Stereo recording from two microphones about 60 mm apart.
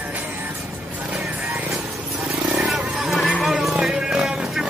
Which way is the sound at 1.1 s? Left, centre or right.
Centre.